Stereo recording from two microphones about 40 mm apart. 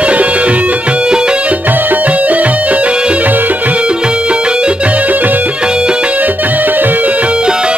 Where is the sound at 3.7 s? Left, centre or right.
Right.